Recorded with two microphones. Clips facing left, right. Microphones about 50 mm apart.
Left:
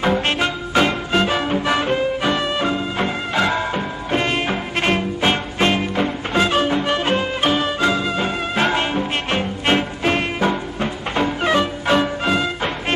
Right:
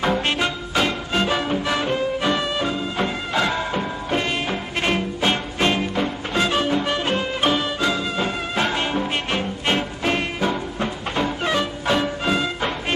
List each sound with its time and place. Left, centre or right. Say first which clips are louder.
0.0 s music: left 2 dB; centre